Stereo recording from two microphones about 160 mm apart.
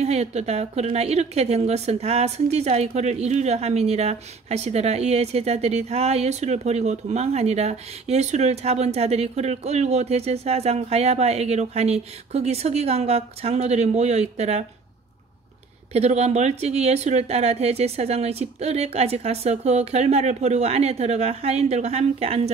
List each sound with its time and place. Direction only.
0.0 s a woman's voice: 45° right (ahead or behind)
15.9 s a woman's voice: 40° right (ahead or behind)